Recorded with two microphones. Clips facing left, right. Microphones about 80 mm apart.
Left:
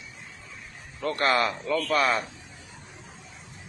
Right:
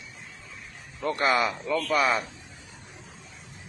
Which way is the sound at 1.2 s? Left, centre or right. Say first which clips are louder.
Left 1 dB; centre.